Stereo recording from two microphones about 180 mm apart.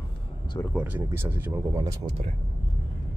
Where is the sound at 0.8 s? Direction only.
10° right (ahead or behind).